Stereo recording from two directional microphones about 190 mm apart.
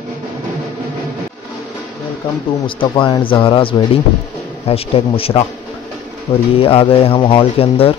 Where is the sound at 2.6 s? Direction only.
25° left (ahead or behind).